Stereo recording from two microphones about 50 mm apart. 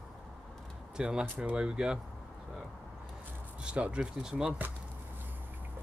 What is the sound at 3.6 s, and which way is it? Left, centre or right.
Speech, right.